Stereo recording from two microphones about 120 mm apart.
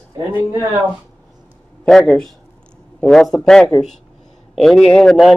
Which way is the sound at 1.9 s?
5° left (ahead or behind).